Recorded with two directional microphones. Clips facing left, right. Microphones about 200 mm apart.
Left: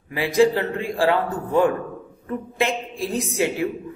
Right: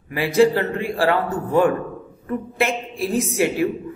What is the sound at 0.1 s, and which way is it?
A man's voice, 15° left (ahead or behind).